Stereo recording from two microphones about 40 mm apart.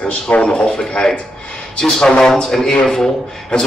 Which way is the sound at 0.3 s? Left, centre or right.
Left.